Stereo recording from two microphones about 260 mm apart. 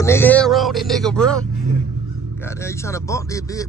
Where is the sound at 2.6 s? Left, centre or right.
Centre.